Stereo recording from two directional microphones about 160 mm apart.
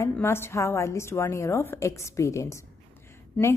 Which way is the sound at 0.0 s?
15° left (ahead or behind).